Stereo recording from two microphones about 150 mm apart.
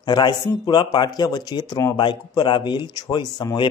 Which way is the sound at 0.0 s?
30° left (ahead or behind).